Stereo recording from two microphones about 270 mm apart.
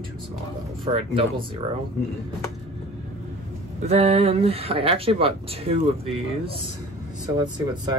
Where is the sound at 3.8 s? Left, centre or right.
Right.